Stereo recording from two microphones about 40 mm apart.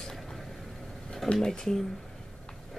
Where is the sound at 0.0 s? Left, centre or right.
Centre.